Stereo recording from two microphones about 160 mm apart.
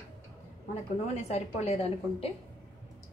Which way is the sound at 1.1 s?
40° left (ahead or behind).